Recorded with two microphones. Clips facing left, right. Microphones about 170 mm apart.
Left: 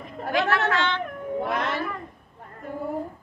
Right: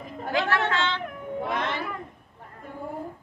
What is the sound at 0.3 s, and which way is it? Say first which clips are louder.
Speech: left 2 dB; 30° right (ahead or behind).